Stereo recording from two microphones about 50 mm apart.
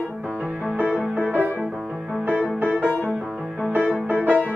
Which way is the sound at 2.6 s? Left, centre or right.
Right.